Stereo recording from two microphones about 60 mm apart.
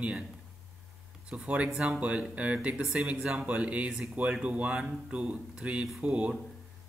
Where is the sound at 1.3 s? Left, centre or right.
Centre.